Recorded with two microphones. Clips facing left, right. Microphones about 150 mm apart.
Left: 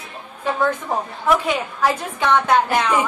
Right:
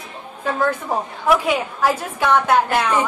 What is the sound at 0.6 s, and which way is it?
A woman's voice, 10° right (ahead or behind).